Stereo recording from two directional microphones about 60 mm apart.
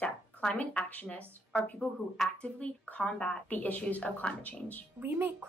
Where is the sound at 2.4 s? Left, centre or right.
Left.